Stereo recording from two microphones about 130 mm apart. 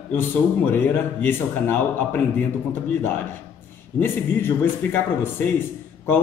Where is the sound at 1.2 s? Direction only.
15° left (ahead or behind).